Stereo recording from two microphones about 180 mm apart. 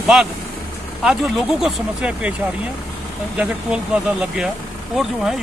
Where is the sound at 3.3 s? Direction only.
5° right (ahead or behind).